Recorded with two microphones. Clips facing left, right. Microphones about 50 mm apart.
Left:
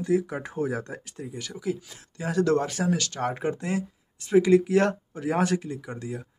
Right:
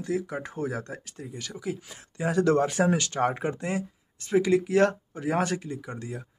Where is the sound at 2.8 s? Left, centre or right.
Centre.